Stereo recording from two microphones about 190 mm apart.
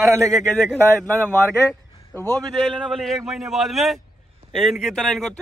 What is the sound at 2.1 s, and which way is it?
Speech, 10° left (ahead or behind).